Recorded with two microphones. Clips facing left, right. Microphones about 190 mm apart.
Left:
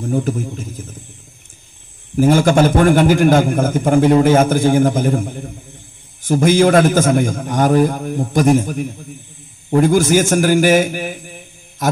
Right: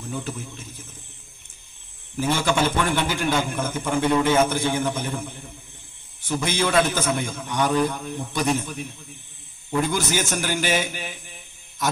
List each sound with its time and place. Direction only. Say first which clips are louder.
0.0 s a man's voice: left 12 dB; 50° left (ahead or behind)
2.1 s a man's voice: left 10 dB; 45° left (ahead or behind)